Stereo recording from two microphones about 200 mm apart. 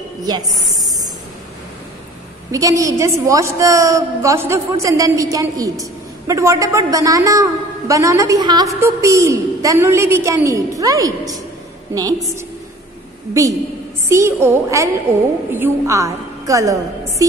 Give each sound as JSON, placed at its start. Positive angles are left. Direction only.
{"t": 0.4, "sound": "a woman's voice", "side_deg": 0}
{"t": 2.5, "sound": "a woman's voice", "side_deg": -15}
{"t": 13.3, "sound": "a woman's voice", "side_deg": -15}